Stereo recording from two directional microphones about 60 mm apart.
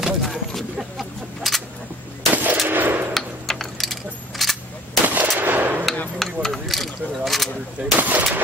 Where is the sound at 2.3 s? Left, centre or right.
Right.